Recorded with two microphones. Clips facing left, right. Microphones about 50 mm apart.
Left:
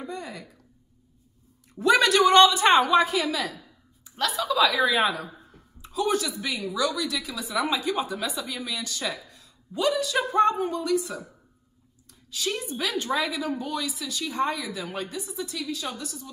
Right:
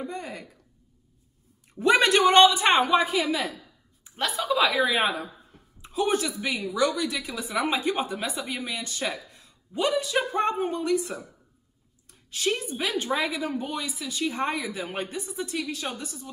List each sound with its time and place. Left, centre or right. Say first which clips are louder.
0.0 s a sound: right 1 dB; right
1.8 s a woman's voice: even; right
4.2 s a woman's voice: left 1 dB; right
6.7 s a woman's voice: right 2 dB; right
12.1 s a sound: right 3 dB; right
12.7 s a woman's voice: even; right